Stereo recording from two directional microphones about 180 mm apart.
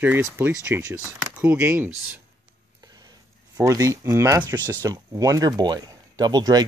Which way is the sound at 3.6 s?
15° right (ahead or behind).